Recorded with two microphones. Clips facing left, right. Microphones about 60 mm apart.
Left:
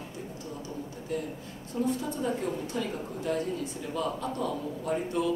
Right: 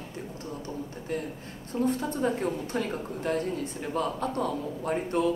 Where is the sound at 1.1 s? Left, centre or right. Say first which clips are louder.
Even; right.